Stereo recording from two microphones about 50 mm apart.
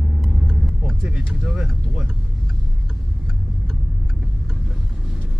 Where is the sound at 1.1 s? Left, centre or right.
Centre.